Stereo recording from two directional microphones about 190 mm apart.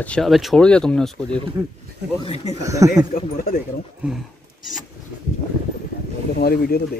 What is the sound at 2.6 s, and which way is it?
Speech, 15° right (ahead or behind).